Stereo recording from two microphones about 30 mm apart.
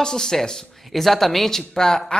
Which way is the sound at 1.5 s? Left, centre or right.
Centre.